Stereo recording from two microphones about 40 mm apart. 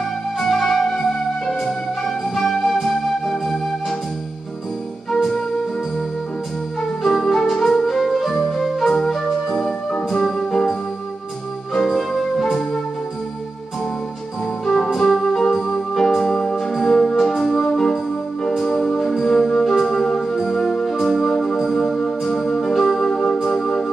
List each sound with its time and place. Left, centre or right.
0.4 s music: centre
2.3 s music: centre
6.8 s music: centre
7.5 s music: centre
7.8 s music: centre
15.0 s music: centre
21.3 s music: centre
22.2 s music: centre